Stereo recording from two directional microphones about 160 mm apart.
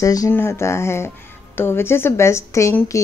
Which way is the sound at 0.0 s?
20° left (ahead or behind).